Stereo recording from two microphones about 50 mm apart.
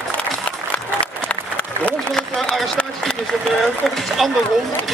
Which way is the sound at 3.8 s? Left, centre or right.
Centre.